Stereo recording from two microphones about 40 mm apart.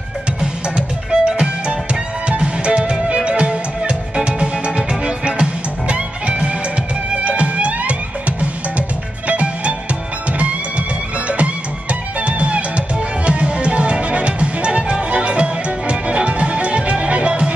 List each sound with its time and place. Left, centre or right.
0.4 s music: right
11.2 s music: right